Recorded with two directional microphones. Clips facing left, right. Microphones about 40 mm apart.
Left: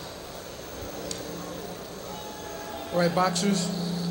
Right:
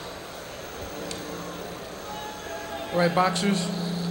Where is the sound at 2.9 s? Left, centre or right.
Right.